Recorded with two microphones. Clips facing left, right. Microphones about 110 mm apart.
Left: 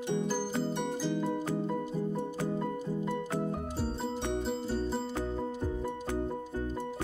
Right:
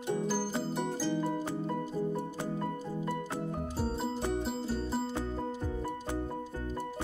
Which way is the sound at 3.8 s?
Centre (ahead or behind).